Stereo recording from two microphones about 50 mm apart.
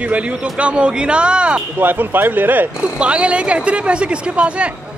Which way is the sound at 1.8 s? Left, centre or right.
Right.